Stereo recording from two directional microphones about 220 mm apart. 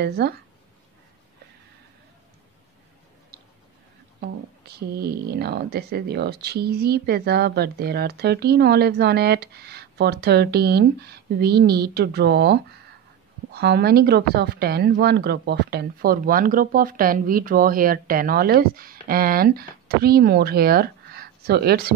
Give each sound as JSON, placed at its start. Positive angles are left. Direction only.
{"t": 0.0, "sound": "speech", "side_deg": -45}
{"t": 4.2, "sound": "speech", "side_deg": -45}